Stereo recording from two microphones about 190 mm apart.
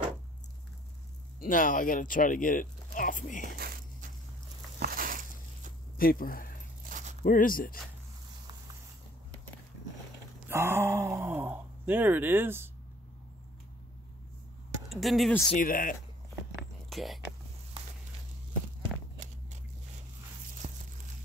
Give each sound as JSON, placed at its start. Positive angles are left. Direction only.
{"t": 1.4, "sound": "speech", "side_deg": 45}
{"t": 3.5, "sound": "a sound", "side_deg": -50}
{"t": 5.9, "sound": "speech", "side_deg": 50}
{"t": 6.9, "sound": "a sound", "side_deg": -40}
{"t": 7.2, "sound": "speech", "side_deg": 45}
{"t": 10.5, "sound": "groan", "side_deg": -15}
{"t": 14.9, "sound": "speech", "side_deg": 0}
{"t": 15.5, "sound": "speech", "side_deg": 45}
{"t": 16.9, "sound": "speech", "side_deg": 0}
{"t": 20.5, "sound": "walk", "side_deg": -40}